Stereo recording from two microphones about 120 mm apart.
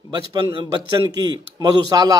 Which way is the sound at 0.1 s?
35° right (ahead or behind).